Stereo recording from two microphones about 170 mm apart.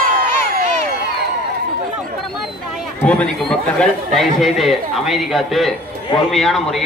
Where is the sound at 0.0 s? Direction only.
50° right (ahead or behind).